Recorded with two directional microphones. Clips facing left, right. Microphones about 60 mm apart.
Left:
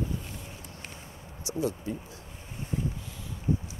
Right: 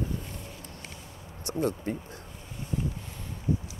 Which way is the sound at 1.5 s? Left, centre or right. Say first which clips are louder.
Right 2 dB; right.